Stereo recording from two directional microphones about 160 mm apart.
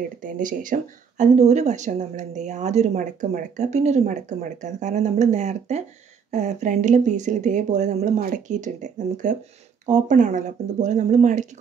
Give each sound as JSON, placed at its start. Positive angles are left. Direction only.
{"t": 0.2, "sound": "speech", "side_deg": -55}